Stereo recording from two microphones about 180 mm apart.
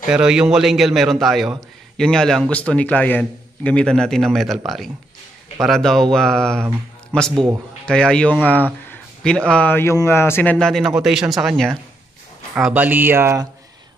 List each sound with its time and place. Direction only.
0.1 s a man's voice: 5° right (ahead or behind)
6.6 s speech: 15° right (ahead or behind)
7.8 s a man's voice: 5° left (ahead or behind)
8.9 s a sound: 5° left (ahead or behind)
9.5 s a man's voice: 10° left (ahead or behind); by 13.5 s 15° right (ahead or behind)